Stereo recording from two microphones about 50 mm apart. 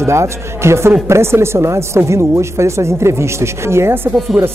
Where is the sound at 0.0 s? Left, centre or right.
Right.